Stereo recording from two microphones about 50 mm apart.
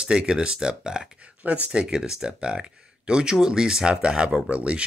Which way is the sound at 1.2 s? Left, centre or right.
Right.